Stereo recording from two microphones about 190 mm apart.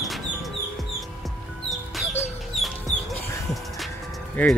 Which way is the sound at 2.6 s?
Centre (ahead or behind).